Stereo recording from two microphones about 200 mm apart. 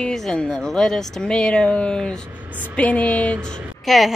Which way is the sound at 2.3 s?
10° right (ahead or behind).